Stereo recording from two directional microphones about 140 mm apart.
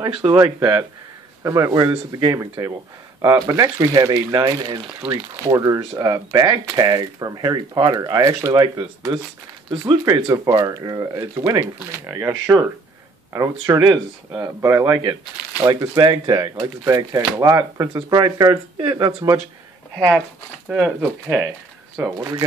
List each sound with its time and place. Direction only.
0.0 s speech: 30° right (ahead or behind)
1.4 s speech: 25° right (ahead or behind)
5.3 s speech: 20° right (ahead or behind)
20.0 s speech: 5° right (ahead or behind)
21.9 s speech: 20° right (ahead or behind)